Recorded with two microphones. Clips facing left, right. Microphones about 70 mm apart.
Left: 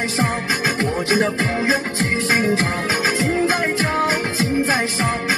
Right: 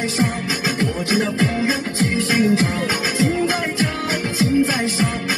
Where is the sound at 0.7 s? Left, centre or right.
Left.